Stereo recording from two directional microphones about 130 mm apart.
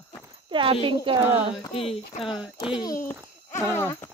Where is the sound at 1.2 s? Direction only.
15° right (ahead or behind).